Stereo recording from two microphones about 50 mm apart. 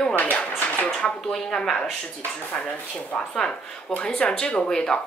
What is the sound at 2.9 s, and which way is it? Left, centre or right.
Speech, centre.